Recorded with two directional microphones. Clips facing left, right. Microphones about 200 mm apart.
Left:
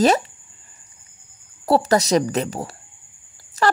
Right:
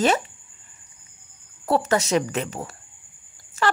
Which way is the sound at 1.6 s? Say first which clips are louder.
Left 4 dB; 35° left (ahead or behind).